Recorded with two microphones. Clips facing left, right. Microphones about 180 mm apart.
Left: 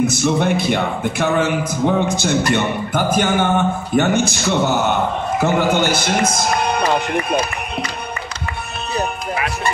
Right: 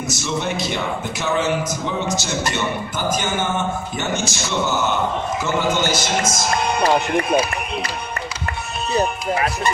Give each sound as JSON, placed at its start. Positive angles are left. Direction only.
{"t": 0.0, "sound": "a man's voice", "side_deg": 55}
{"t": 6.8, "sound": "speech", "side_deg": -10}